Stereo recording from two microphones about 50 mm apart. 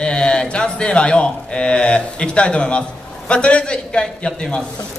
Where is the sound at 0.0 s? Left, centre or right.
Centre.